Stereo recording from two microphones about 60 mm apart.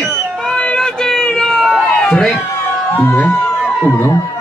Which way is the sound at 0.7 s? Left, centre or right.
Centre.